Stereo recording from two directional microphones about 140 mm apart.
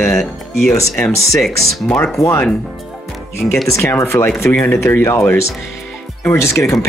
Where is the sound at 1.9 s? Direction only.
5° left (ahead or behind).